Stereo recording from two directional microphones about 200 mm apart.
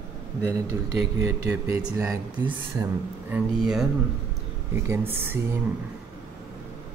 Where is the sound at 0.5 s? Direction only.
15° right (ahead or behind).